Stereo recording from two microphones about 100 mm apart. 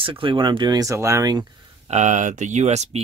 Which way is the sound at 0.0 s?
60° right (ahead or behind).